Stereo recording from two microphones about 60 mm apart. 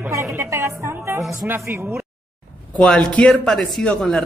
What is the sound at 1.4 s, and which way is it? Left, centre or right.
Speech, right.